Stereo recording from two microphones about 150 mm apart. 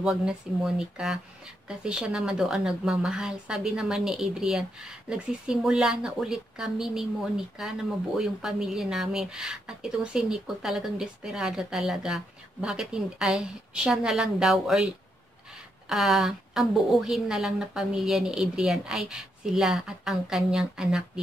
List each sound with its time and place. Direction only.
0.0 s speech: 5° right (ahead or behind)